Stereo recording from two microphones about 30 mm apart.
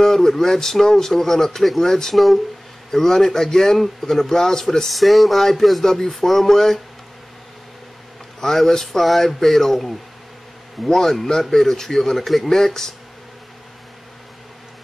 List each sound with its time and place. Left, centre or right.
0.0 s a man's voice: centre
2.1 s a sound: centre
2.9 s a man's voice: centre
4.8 s a sound: centre
5.4 s a man's voice: centre
8.4 s a man's voice: centre